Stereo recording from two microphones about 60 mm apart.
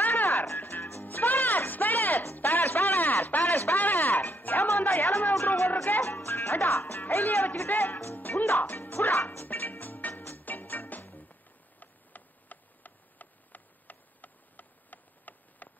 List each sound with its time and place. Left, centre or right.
0.0 s music: left
7.5 s speech: left
8.0 s music: left
11.8 s a sound: left